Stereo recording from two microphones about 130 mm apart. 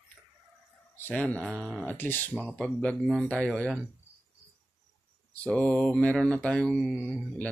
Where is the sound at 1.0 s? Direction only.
10° left (ahead or behind).